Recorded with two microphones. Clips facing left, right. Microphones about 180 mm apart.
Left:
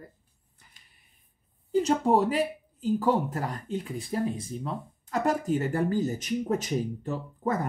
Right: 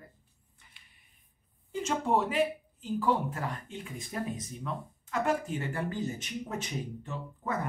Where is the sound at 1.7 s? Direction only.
35° left (ahead or behind).